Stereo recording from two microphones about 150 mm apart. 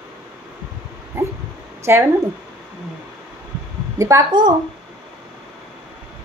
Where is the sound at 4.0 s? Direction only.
20° right (ahead or behind).